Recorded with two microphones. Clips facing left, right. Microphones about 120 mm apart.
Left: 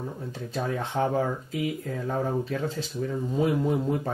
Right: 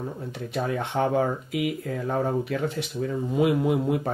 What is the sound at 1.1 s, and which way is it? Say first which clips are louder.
Speech: right 3 dB; 70° right (ahead or behind).